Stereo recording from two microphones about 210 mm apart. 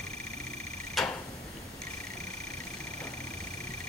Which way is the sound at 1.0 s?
Centre (ahead or behind).